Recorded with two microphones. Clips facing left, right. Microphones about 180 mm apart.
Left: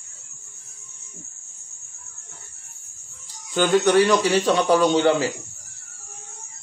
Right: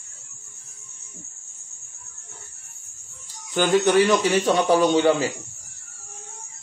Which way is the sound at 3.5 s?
20° right (ahead or behind).